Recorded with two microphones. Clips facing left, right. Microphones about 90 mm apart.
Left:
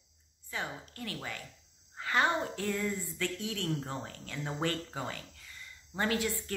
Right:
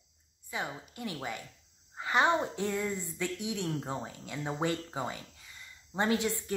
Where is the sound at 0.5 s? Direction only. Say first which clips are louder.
Right 1 dB; 15° right (ahead or behind).